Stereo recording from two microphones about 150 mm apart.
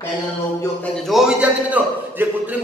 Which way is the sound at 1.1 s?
5° right (ahead or behind).